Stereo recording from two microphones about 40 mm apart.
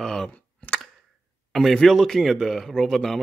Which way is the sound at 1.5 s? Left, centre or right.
Centre.